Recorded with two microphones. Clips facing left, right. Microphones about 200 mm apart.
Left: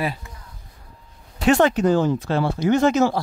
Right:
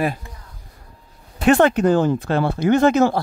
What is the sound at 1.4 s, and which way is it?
Speech, 55° right (ahead or behind).